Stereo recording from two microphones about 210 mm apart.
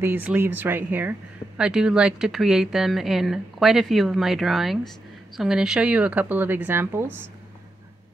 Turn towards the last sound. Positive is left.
turn(degrees=-10)  # may be behind; listen again after turning